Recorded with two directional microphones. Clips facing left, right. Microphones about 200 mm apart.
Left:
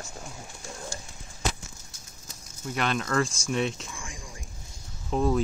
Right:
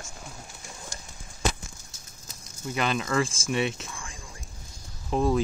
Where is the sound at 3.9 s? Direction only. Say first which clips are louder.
Left 1 dB; 15° left (ahead or behind).